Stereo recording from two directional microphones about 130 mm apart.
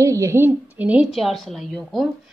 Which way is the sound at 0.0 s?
25° right (ahead or behind).